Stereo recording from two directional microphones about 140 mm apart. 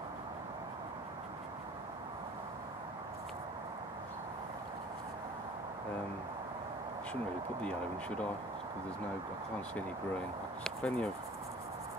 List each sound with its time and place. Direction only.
7.6 s speech: 10° left (ahead or behind)
10.6 s speech: 10° left (ahead or behind)